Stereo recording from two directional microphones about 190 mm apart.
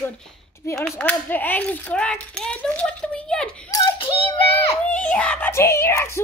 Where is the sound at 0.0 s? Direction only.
5° left (ahead or behind).